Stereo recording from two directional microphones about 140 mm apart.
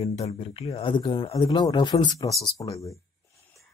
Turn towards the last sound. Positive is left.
turn(degrees=25)  # may be behind; listen again after turning